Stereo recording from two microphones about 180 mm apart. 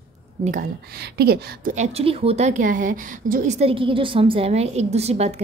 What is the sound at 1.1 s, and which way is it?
Speech, 60° right (ahead or behind).